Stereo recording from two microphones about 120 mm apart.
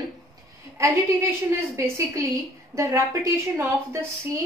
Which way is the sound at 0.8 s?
20° right (ahead or behind).